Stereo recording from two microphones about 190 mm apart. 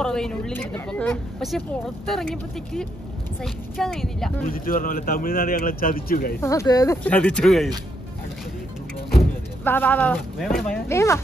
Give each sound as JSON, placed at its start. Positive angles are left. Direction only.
{"t": 0.0, "sound": "a woman's voice", "side_deg": 5}
{"t": 4.5, "sound": "speech", "side_deg": 50}
{"t": 6.4, "sound": "a woman's voice", "side_deg": 15}
{"t": 9.7, "sound": "speech", "side_deg": 10}
{"t": 10.9, "sound": "speech", "side_deg": 15}